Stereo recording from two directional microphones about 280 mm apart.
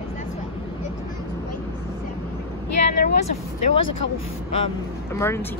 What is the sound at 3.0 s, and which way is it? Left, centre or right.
Speech, left.